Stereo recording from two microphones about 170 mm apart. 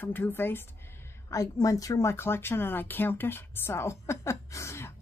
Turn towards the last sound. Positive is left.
turn(degrees=15)  # may be behind; listen again after turning